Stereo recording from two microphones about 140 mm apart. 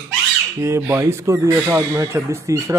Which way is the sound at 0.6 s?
20° right (ahead or behind).